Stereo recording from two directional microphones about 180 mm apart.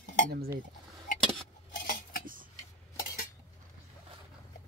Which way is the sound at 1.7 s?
50° left (ahead or behind).